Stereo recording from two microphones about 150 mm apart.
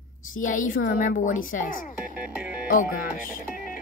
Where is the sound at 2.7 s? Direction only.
65° left (ahead or behind).